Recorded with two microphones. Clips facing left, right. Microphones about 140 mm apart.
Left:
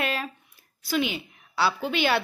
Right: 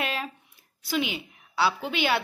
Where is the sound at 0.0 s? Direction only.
15° right (ahead or behind).